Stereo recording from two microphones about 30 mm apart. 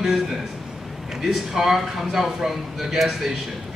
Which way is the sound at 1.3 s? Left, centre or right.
Centre.